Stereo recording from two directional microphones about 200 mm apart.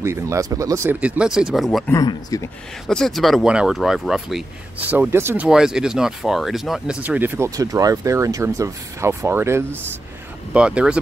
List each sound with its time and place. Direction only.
0.0 s speech: 15° right (ahead or behind)
1.9 s speech: 15° left (ahead or behind)
2.9 s speech: centre (ahead or behind)